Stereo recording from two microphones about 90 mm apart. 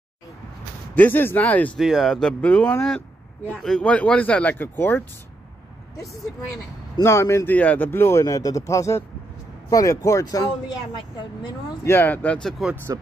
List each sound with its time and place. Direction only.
0.9 s speech: 20° left (ahead or behind)
1.8 s speech: centre (ahead or behind); by 5.0 s 20° left (ahead or behind)
6.5 s speech: 35° left (ahead or behind)
7.4 s speech: 15° left (ahead or behind); by 11.5 s 55° left (ahead or behind)
11.8 s speech: 25° left (ahead or behind)
12.4 s speech: 5° left (ahead or behind)
12.9 s speech: 40° right (ahead or behind)